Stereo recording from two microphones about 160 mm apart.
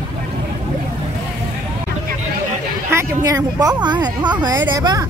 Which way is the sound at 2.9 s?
20° right (ahead or behind).